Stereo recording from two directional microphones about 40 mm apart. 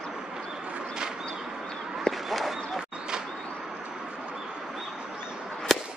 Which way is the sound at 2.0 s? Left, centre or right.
Centre.